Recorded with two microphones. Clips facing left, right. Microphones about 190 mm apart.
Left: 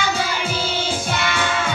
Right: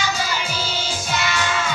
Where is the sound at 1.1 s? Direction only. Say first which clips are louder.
Right 2 dB; 55° left (ahead or behind).